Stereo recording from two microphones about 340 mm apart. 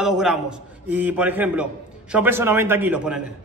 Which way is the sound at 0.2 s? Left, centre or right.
Centre.